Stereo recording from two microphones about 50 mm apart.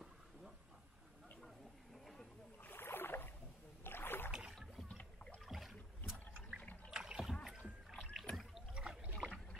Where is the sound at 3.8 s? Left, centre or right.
Left.